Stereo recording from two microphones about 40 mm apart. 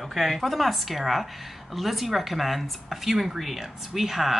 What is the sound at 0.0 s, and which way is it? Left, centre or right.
A woman's voice, centre.